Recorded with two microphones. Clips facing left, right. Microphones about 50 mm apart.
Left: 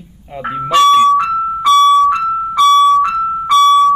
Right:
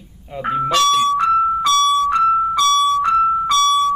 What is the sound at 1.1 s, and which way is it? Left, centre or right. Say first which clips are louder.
Music: left 1 dB; left.